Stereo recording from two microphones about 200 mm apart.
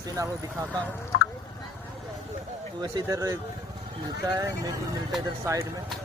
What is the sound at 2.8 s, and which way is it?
Speech, 20° right (ahead or behind).